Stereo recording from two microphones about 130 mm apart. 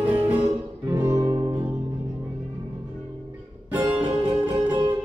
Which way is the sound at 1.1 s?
40° right (ahead or behind).